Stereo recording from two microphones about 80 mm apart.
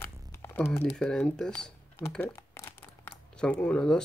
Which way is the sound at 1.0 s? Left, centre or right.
Centre.